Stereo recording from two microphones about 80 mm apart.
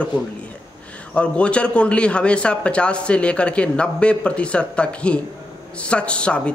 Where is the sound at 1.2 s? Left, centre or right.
Centre.